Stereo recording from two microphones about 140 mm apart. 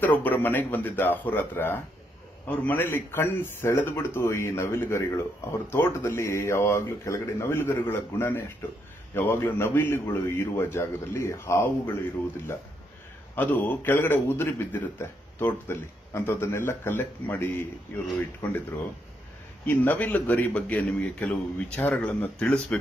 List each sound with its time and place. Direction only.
0.0 s a man's voice: 10° left (ahead or behind)
19.6 s a man's voice: 15° left (ahead or behind)